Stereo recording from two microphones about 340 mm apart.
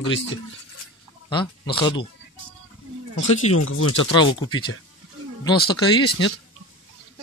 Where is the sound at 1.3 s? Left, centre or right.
Centre.